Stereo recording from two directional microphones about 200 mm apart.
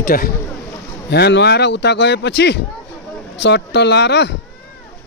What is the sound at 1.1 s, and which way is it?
Speech, 55° left (ahead or behind).